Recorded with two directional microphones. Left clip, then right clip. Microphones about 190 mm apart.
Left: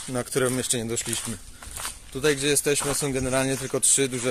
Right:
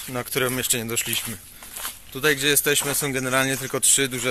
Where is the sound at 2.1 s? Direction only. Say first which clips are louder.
Right 3 dB; 15° left (ahead or behind).